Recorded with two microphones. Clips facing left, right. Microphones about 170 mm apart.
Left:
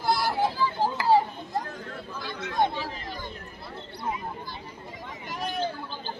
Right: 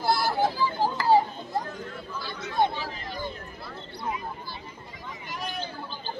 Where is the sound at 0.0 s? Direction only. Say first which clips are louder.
Right 1 dB; 5° right (ahead or behind).